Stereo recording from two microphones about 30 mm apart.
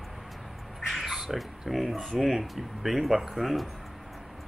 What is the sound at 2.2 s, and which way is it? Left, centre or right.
Speech, centre.